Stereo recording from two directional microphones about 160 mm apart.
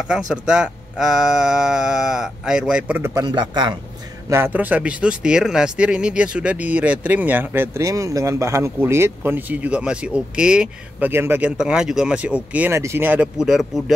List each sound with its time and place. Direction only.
0.3 s speech: 5° right (ahead or behind); by 3.7 s 25° right (ahead or behind)
4.3 s speech: 10° right (ahead or behind)